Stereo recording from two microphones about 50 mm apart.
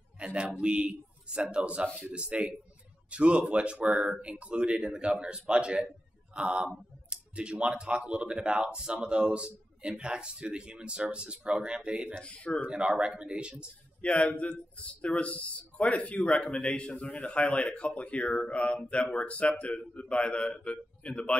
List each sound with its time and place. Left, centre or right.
0.2 s speech: right
12.2 s speech: left
12.6 s speech: right
14.0 s speech: left